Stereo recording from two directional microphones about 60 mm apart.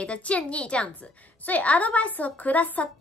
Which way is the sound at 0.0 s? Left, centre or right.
Left.